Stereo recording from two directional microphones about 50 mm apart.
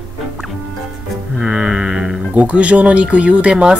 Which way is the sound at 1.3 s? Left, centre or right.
Centre.